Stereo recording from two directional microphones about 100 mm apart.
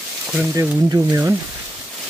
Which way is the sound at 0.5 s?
35° right (ahead or behind).